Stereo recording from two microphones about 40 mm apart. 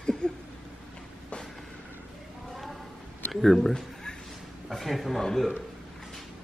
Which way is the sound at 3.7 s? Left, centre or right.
Centre.